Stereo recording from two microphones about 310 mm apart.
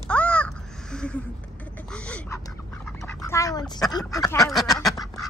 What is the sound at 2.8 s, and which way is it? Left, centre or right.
Duck, centre.